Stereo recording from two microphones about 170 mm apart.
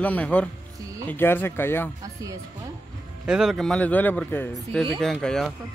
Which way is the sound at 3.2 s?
5° right (ahead or behind).